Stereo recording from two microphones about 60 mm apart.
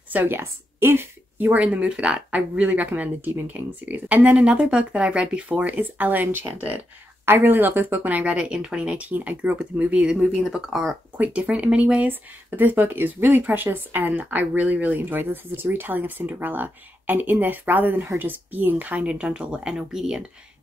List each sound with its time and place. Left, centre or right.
0.1 s a woman's voice: right; by 2.2 s centre
2.3 s speech: right
5.5 s speech: right
7.2 s speech: right; by 9.0 s centre
9.1 s speech: right
10.0 s speech: centre
11.1 s speech: right
12.1 s speech: right; by 20.2 s centre